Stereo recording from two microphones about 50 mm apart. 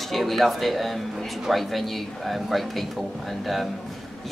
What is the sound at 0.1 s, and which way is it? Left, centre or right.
Speech, centre.